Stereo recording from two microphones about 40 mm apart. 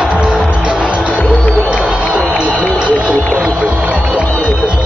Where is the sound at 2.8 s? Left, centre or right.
Right.